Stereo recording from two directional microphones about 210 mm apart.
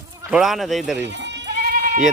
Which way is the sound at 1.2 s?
50° right (ahead or behind).